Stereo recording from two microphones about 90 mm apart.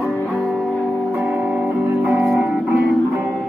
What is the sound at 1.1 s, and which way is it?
Music, 15° right (ahead or behind).